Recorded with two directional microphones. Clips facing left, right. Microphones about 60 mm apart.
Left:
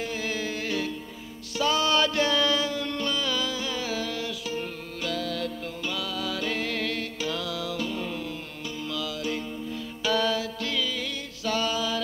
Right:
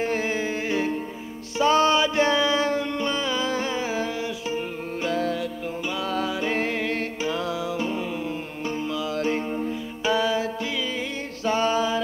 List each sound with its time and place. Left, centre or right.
0.0 s music: right
9.1 s music: right
10.1 s music: centre
11.4 s a sound: right